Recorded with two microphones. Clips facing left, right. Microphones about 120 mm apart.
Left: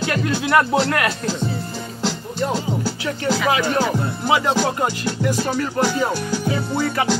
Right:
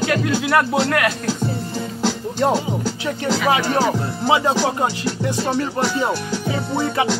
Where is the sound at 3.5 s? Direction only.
25° right (ahead or behind).